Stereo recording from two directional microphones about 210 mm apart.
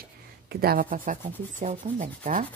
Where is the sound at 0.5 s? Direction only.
45° right (ahead or behind).